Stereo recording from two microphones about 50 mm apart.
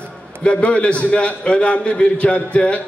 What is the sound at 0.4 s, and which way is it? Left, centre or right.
A man's voice, left.